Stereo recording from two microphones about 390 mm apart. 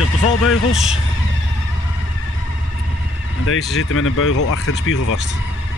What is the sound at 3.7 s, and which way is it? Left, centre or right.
Speech, left.